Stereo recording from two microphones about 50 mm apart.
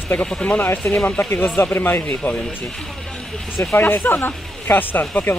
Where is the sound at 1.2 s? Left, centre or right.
Left.